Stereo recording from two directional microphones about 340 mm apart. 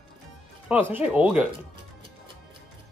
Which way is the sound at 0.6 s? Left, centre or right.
Centre.